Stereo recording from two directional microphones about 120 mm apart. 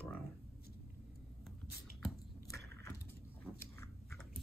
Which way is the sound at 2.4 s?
25° left (ahead or behind).